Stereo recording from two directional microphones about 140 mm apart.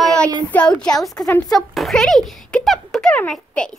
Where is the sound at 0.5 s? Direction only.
10° left (ahead or behind).